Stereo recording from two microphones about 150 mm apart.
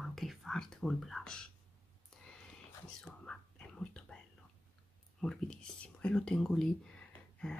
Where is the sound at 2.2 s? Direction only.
5° left (ahead or behind).